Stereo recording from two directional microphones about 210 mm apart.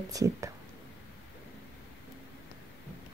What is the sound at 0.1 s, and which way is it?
Speech, 15° right (ahead or behind).